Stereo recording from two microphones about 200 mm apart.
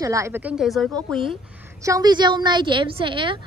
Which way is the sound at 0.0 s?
15° right (ahead or behind).